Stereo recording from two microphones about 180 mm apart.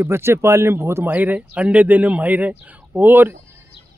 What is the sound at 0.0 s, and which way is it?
Speech, 15° right (ahead or behind).